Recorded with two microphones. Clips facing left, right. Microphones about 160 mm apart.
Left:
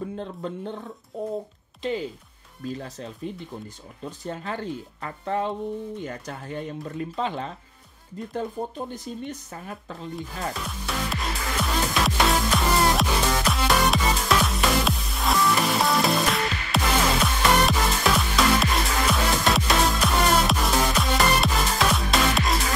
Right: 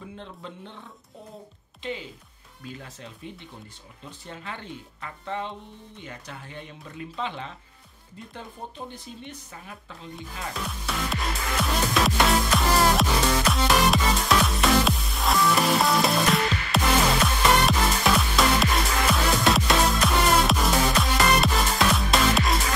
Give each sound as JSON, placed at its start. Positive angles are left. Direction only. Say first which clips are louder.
{"t": 0.1, "sound": "speech", "louder": "left 8 dB", "side_deg": 40}
{"t": 4.2, "sound": "speech", "louder": "left 7 dB", "side_deg": 40}
{"t": 10.1, "sound": "music", "louder": "left 3 dB", "side_deg": 0}